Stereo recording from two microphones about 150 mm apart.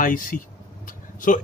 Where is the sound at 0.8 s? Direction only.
65° left (ahead or behind).